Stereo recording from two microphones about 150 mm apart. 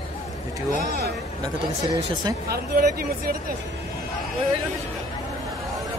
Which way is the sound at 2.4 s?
90° right.